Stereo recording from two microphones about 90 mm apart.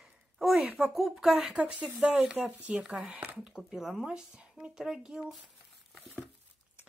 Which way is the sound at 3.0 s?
5° right (ahead or behind).